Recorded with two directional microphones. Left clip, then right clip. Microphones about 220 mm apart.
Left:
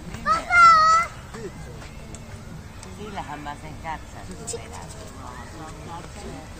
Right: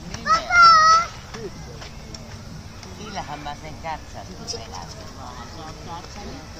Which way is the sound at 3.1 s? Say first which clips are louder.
Right 2 dB; 45° right (ahead or behind).